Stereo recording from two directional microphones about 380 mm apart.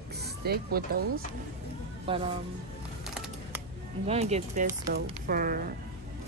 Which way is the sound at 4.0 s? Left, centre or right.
Centre.